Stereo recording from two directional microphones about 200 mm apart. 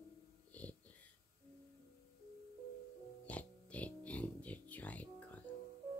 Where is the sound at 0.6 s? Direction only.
5° left (ahead or behind).